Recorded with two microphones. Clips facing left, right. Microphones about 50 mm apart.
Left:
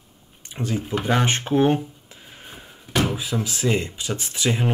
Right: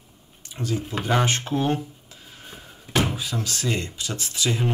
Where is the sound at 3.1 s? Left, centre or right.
Centre.